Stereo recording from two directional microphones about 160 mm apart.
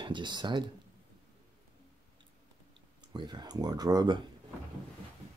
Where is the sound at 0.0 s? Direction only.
30° right (ahead or behind).